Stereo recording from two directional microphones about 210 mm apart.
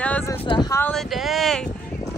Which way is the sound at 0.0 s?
10° left (ahead or behind).